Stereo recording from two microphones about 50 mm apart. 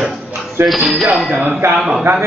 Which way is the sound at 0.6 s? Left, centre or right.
Right.